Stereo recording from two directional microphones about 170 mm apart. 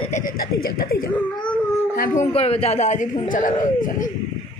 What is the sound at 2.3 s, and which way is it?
A man's voice, 35° left (ahead or behind).